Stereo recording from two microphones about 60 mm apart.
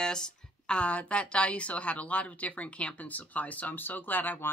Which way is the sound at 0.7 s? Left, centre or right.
Left.